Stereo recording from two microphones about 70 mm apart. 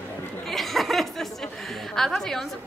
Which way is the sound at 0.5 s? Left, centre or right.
Centre.